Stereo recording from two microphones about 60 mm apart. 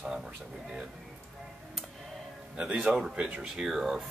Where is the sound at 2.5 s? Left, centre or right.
Centre.